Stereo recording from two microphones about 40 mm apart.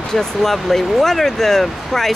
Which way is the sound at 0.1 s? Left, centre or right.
Centre.